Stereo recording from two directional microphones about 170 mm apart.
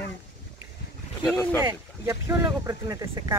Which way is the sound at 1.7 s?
15° right (ahead or behind).